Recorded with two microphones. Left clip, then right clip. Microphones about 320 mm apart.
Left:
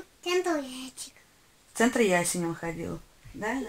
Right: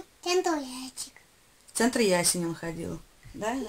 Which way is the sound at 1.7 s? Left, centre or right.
Centre.